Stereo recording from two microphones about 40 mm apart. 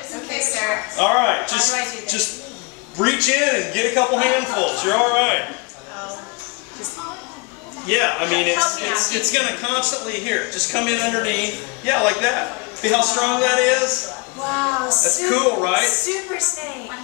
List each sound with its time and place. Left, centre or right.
0.6 s speech: centre
7.9 s speech: centre
13.0 s a sound: centre
14.4 s speech: centre